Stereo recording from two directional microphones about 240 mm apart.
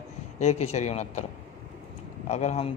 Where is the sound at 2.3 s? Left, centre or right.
Left.